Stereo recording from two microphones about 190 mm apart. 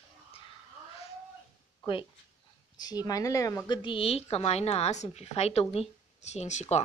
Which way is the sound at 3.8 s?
25° left (ahead or behind).